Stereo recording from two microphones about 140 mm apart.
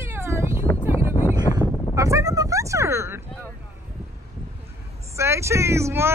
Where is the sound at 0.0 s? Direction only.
20° right (ahead or behind).